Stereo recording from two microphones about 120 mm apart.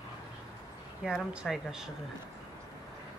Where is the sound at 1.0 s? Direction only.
5° right (ahead or behind).